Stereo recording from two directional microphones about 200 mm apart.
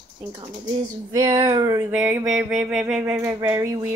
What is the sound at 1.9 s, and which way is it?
A woman's voice, 5° right (ahead or behind).